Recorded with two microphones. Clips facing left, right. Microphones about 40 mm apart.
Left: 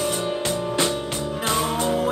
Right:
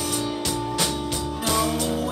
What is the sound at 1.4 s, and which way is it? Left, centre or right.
Music, left.